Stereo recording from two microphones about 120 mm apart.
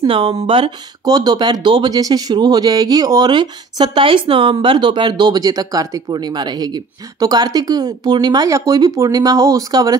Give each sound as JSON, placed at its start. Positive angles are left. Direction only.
{"t": 0.0, "sound": "speech", "side_deg": -50}
{"t": 1.0, "sound": "speech", "side_deg": -35}